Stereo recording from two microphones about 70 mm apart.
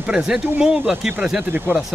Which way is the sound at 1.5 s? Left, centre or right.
Right.